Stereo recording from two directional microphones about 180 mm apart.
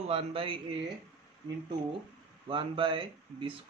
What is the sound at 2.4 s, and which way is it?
Speech, 30° right (ahead or behind).